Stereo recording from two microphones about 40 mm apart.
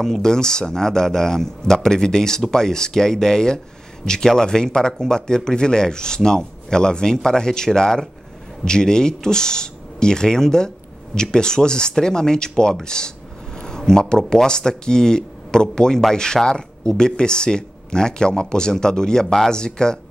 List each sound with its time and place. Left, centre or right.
0.0 s speech: centre